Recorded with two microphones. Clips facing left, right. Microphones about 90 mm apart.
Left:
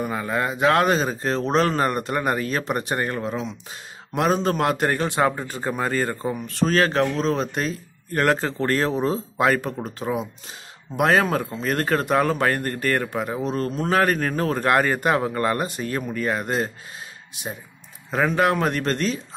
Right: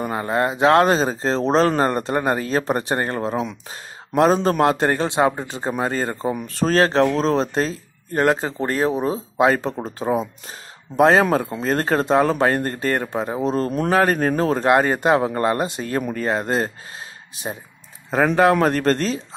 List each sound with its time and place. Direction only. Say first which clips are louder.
0.3 s speech: right 4 dB; 30° right (ahead or behind)
6.4 s speech: right 2 dB; 35° right (ahead or behind)
18.3 s speech: right 6 dB; 35° right (ahead or behind)